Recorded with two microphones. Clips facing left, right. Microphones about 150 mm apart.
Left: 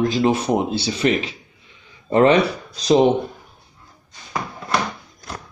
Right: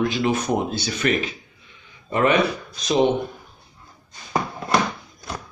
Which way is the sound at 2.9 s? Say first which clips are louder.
Left 4 dB; 35° left (ahead or behind).